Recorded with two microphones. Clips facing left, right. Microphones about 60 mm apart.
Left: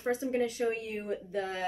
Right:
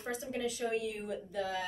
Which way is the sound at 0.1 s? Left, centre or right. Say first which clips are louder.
Left 6 dB; left.